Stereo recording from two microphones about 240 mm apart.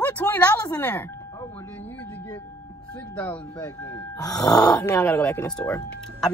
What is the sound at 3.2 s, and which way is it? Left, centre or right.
Speech, centre.